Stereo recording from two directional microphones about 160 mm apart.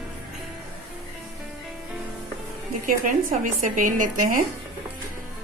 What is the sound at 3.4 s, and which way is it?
A woman's voice, 55° right (ahead or behind).